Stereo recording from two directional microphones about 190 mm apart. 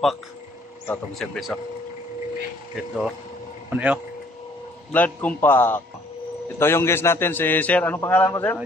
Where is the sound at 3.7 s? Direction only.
10° right (ahead or behind).